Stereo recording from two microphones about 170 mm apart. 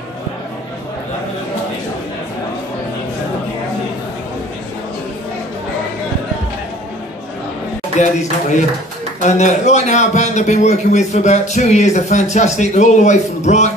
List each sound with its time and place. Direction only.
8.0 s a man's voice: 40° left (ahead or behind)